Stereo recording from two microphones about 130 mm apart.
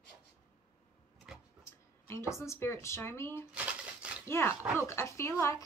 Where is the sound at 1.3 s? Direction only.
5° right (ahead or behind).